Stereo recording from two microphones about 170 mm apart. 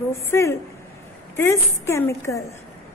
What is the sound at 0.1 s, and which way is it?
A woman's voice, 15° left (ahead or behind).